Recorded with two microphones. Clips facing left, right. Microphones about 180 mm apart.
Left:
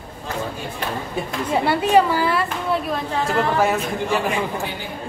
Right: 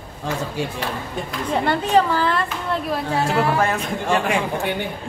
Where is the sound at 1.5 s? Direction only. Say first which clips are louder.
Left 2 dB; 10° left (ahead or behind).